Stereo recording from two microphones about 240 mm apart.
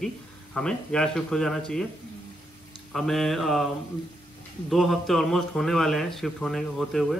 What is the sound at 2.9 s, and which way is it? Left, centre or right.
Speech, centre.